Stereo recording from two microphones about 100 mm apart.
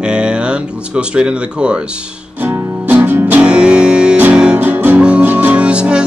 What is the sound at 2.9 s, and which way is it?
Music, 15° right (ahead or behind).